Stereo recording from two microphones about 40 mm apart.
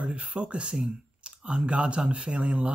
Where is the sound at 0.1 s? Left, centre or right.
Right.